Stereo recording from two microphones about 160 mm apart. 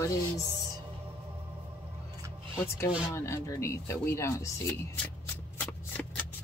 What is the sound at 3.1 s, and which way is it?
Speech, 15° left (ahead or behind).